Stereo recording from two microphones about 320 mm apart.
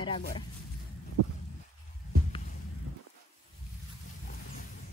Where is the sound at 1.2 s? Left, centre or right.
Right.